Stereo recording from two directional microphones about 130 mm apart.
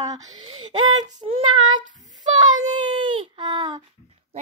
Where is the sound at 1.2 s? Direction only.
50° right (ahead or behind).